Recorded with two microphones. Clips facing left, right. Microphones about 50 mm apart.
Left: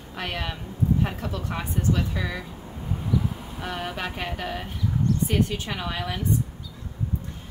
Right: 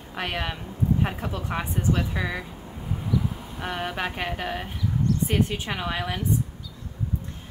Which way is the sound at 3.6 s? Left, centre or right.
Centre.